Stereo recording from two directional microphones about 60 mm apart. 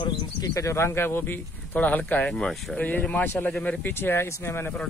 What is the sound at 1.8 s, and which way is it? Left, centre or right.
Speech, left.